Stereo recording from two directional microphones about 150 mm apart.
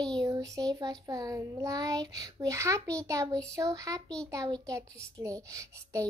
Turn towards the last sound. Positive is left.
turn(degrees=-20)  # may be behind; listen again after turning